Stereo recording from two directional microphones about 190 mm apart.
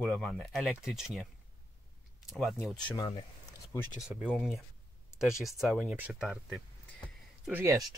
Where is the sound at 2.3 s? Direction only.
Centre (ahead or behind).